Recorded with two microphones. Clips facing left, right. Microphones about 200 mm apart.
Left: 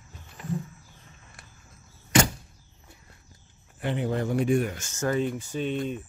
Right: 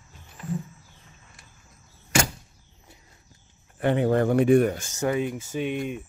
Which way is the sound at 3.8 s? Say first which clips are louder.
Right 7 dB; 60° right (ahead or behind).